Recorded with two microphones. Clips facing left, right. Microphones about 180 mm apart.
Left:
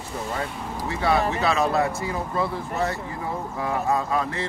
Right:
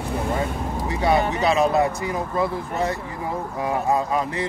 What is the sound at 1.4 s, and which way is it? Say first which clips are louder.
Speech: right 3 dB; 20° right (ahead or behind).